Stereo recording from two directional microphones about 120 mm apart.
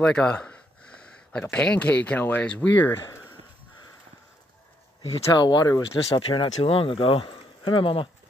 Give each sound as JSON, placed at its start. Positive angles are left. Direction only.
{"t": 0.0, "sound": "speech", "side_deg": 10}
{"t": 5.3, "sound": "speech", "side_deg": 35}